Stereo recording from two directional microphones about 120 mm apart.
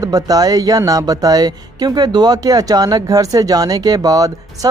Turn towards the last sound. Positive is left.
turn(degrees=-30)  # may be behind; listen again after turning